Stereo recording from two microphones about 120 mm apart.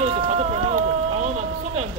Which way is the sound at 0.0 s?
65° right (ahead or behind).